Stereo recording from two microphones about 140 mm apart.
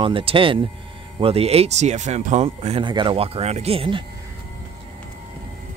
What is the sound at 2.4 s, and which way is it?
Speech, 40° right (ahead or behind).